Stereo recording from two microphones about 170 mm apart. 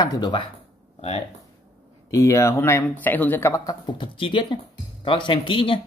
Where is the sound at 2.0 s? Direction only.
15° left (ahead or behind).